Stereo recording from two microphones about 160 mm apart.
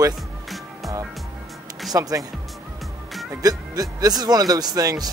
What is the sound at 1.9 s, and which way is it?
Speech, 20° right (ahead or behind).